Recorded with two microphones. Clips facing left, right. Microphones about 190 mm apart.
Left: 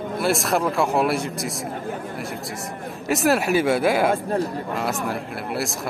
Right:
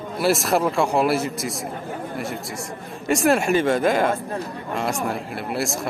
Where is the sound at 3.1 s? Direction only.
Centre (ahead or behind).